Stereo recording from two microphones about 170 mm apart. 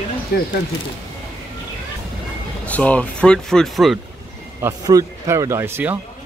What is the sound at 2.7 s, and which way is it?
Speech, 10° left (ahead or behind).